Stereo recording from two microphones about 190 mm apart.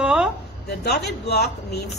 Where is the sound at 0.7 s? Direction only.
60° left (ahead or behind).